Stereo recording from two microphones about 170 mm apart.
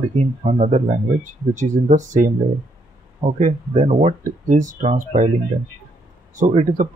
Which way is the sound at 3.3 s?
45° right (ahead or behind).